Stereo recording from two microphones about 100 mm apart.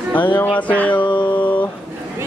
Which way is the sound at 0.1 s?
20° left (ahead or behind).